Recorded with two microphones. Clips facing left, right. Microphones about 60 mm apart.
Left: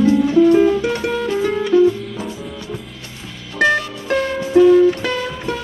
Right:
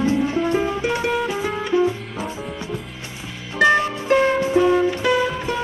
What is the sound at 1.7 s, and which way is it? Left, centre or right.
Music, right.